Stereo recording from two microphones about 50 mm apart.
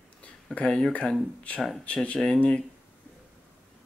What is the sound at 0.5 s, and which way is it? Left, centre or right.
Speech, centre.